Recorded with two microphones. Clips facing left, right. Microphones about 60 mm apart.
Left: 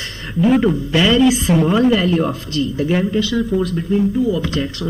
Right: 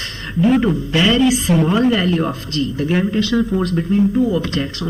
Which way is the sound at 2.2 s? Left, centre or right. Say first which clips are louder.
Left 1 dB; right.